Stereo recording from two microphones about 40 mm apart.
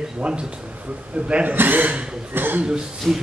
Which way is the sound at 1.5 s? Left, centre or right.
Right.